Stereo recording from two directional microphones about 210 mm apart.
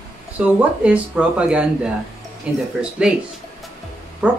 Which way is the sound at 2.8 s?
5° right (ahead or behind).